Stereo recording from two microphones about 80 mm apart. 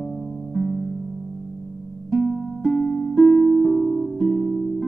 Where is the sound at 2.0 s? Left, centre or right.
Centre.